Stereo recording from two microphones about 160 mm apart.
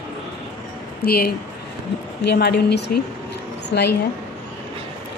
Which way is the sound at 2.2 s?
90° left.